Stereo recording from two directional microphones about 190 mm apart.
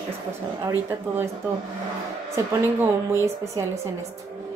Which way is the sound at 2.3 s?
15° right (ahead or behind).